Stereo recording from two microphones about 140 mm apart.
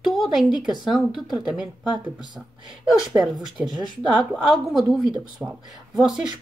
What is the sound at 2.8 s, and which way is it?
Speech, centre (ahead or behind).